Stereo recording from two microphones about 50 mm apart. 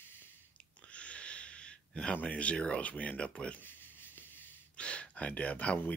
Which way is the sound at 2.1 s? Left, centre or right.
Left.